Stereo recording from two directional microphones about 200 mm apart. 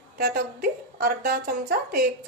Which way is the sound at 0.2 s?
50° right (ahead or behind).